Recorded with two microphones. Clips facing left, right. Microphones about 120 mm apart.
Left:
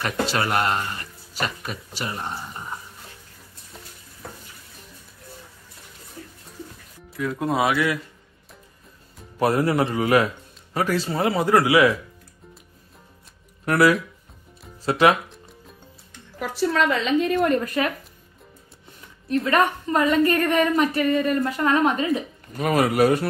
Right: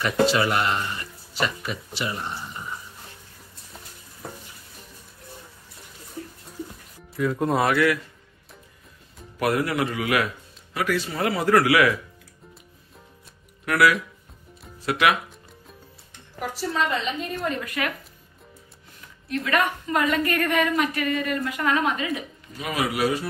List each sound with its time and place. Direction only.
0.0 s a woman's voice: 45° left (ahead or behind)
7.2 s speech: centre (ahead or behind)
9.4 s a woman's voice: 30° left (ahead or behind)
13.7 s a woman's voice: 35° left (ahead or behind)
16.7 s a woman's voice: 90° left
17.6 s a woman's voice: 35° left (ahead or behind)
19.2 s a woman's voice: 35° left (ahead or behind)
22.5 s speech: 50° left (ahead or behind)